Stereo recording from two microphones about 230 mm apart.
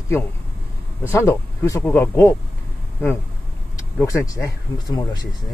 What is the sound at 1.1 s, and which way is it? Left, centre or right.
Speech, centre.